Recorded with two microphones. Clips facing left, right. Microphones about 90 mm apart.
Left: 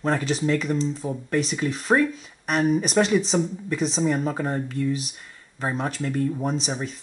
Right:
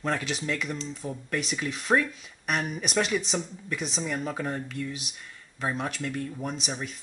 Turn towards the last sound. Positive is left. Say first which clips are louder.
# left 6 dB
turn(degrees=35)  # may be behind; listen again after turning